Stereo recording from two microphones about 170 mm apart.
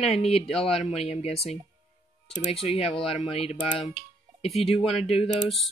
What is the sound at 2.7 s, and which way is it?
Speech, 35° left (ahead or behind).